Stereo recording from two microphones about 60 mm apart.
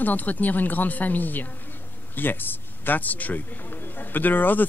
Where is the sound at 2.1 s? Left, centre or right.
Left.